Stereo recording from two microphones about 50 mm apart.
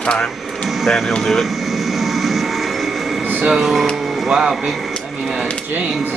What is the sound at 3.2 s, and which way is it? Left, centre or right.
Air conditioning, right.